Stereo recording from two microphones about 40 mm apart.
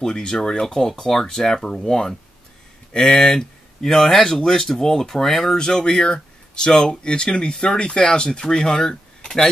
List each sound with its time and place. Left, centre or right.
0.0 s speech: centre
3.2 s speech: centre
5.6 s speech: centre